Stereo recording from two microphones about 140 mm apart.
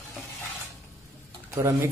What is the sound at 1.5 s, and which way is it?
Speech, 15° right (ahead or behind).